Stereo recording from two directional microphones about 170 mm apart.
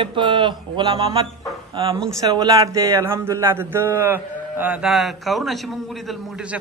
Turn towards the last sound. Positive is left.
turn(degrees=-5)  # may be behind; listen again after turning